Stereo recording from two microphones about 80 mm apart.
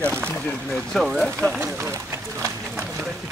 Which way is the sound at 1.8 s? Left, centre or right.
Right.